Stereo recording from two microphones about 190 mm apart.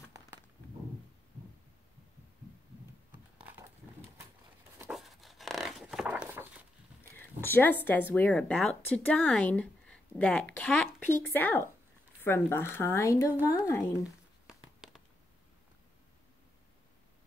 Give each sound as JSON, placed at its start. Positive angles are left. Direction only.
{"t": 4.7, "sound": "dog", "side_deg": -5}
{"t": 7.4, "sound": "speech", "side_deg": 10}
{"t": 14.5, "sound": "a sound", "side_deg": -5}